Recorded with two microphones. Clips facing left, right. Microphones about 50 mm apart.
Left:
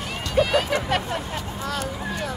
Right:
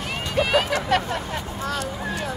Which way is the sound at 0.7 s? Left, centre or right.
Centre.